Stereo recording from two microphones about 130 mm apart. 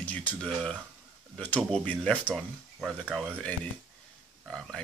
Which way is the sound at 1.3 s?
10° left (ahead or behind).